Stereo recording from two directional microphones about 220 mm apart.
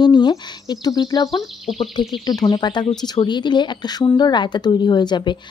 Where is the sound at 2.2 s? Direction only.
15° left (ahead or behind).